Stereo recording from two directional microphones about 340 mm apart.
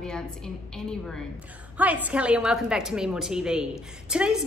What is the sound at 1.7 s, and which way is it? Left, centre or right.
A woman's voice, centre.